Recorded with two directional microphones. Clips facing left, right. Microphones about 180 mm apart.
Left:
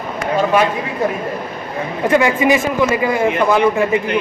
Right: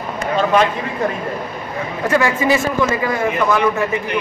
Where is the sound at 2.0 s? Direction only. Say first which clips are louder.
Left 3 dB; 20° left (ahead or behind).